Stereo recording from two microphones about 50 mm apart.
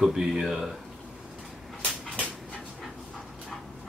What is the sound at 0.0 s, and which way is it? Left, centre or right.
Speech, centre.